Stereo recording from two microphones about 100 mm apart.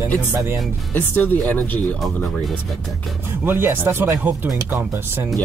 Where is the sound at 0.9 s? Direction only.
20° left (ahead or behind).